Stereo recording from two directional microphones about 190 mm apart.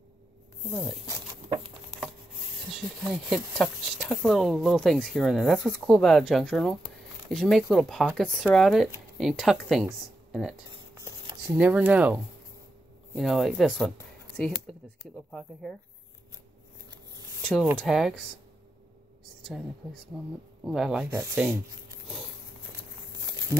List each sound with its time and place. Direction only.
1.0 s patter: 25° right (ahead or behind)
2.7 s speech: centre (ahead or behind)
11.0 s a sound: 20° right (ahead or behind)
11.5 s speech: 5° right (ahead or behind)
17.4 s a sound: 5° left (ahead or behind)
17.7 s speech: centre (ahead or behind)
19.4 s speech: centre (ahead or behind)
21.1 s speech: 15° right (ahead or behind)
23.2 s a sound: 20° right (ahead or behind)